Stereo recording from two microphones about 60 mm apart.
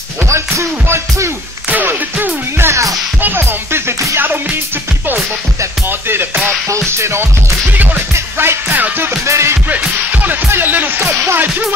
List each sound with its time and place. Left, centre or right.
0.3 s music: right
1.7 s music: right
2.5 s music: right
4.2 s speech: right
5.9 s speech: right
6.9 s music: right
7.7 s music: right
8.4 s speech: right
9.2 s music: right
10.1 s music: right
10.5 s speech: right
11.0 s music: right